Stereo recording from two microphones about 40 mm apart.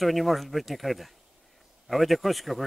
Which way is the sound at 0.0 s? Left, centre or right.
Centre.